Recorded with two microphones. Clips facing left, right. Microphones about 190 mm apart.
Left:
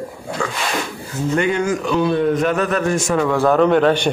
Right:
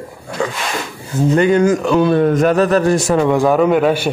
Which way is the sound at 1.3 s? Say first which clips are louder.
Right 6 dB; 40° right (ahead or behind).